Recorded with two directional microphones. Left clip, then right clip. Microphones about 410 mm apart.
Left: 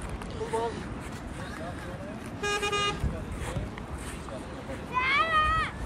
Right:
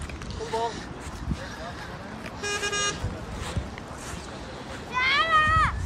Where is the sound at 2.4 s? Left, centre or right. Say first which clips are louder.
Even; centre.